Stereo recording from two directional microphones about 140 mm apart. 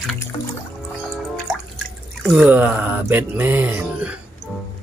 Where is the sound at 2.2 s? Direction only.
5° right (ahead or behind).